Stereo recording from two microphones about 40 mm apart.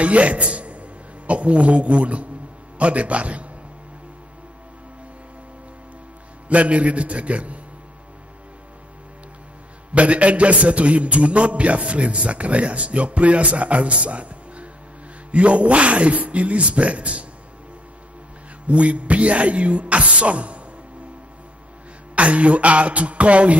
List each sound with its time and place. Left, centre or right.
0.0 s a man's voice: right
6.5 s a man's voice: right
9.9 s a man's voice: right
18.7 s a man's voice: right
22.1 s a man's voice: right